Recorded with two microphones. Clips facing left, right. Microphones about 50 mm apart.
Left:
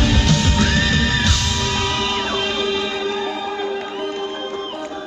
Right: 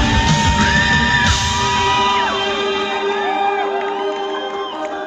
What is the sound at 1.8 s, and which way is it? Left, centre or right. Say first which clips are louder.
Music: right 7 dB; right.